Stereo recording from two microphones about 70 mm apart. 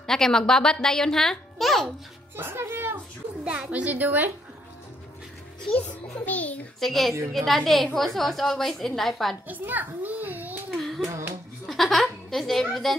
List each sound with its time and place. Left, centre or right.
0.0 s a child's voice: centre
2.3 s speech: right
3.7 s a woman's voice: right
5.7 s a child's voice: left
6.8 s a woman's voice: centre
9.5 s a child's voice: right
10.7 s child singing: centre
11.1 s a sound: right
11.6 s speech: centre